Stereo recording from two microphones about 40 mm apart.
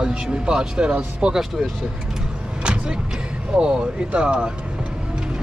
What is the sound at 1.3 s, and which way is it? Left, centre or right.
Speech, centre.